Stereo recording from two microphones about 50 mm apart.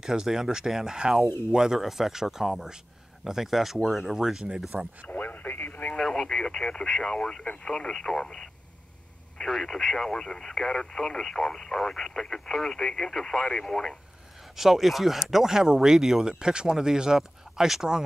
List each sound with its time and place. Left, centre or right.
0.0 s speech: centre
5.0 s radio: left
5.9 s speech: centre
14.5 s speech: centre